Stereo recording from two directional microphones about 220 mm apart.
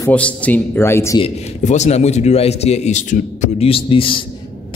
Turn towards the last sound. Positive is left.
turn(degrees=25)  # may be behind; listen again after turning